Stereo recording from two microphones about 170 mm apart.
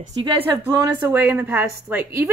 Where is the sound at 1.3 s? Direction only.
10° right (ahead or behind).